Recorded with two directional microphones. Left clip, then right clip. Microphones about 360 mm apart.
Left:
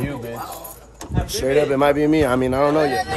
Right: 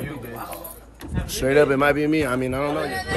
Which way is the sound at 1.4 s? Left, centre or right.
Centre.